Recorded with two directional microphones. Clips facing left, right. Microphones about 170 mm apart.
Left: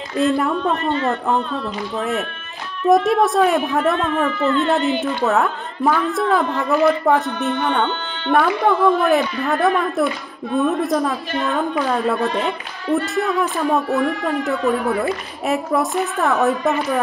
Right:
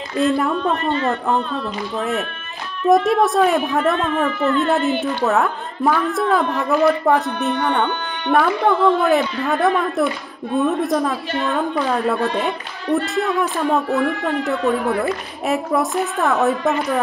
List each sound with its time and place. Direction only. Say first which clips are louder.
0.2 s speech: even; centre (ahead or behind)